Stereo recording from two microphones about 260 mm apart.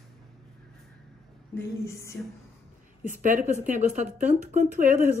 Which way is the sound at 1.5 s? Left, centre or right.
Centre.